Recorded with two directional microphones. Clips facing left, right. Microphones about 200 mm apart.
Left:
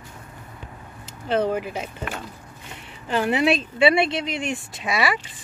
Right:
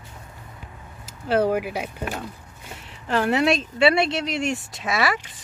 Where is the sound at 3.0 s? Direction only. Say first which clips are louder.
Even; centre (ahead or behind).